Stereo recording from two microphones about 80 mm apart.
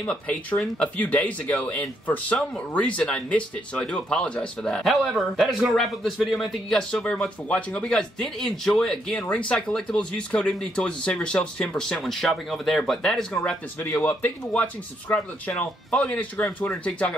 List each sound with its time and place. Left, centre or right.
0.1 s a man's voice: centre
6.8 s speech: centre
14.0 s speech: centre